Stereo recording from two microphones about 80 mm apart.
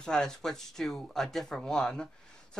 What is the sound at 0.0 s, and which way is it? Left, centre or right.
Speech, centre.